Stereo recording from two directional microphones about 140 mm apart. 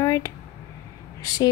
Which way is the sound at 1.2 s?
25° left (ahead or behind).